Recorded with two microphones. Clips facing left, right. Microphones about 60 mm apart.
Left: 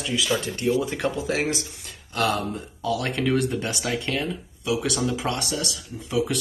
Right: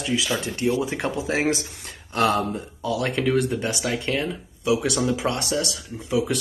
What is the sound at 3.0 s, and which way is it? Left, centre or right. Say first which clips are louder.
Speech: right 3 dB; centre.